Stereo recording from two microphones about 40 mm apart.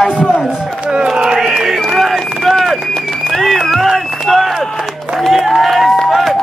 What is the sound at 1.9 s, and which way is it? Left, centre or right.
Run, centre.